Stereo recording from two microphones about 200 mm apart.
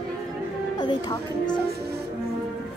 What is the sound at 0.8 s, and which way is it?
Speech, 20° left (ahead or behind).